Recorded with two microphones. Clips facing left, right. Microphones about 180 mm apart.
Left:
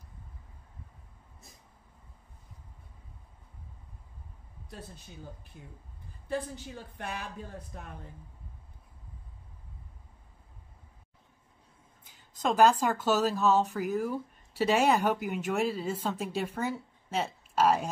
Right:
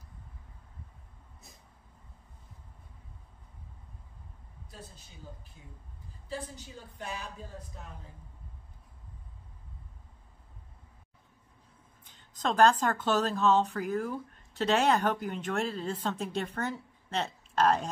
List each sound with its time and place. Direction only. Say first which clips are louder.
6.2 s a woman's voice: left 5 dB; 60° left (ahead or behind)
12.0 s speech: left 2 dB; 10° left (ahead or behind)